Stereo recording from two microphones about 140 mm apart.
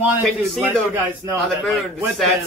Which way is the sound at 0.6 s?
15° right (ahead or behind).